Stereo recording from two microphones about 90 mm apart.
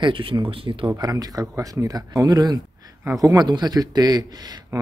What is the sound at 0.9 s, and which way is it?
Speech, 45° right (ahead or behind).